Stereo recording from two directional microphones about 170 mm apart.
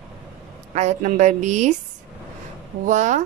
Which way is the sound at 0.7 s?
40° right (ahead or behind).